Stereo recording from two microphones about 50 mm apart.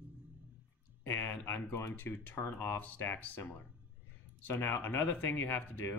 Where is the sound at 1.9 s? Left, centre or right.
Left.